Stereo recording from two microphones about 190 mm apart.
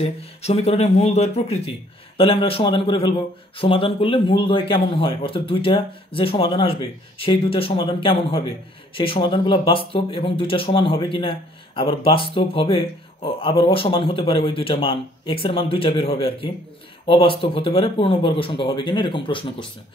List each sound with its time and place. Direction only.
0.0 s speech: 35° left (ahead or behind)